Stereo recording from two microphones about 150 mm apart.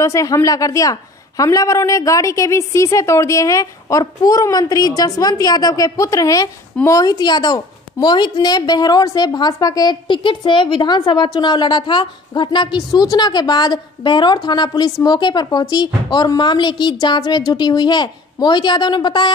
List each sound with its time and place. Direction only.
0.0 s a woman's voice: 20° left (ahead or behind)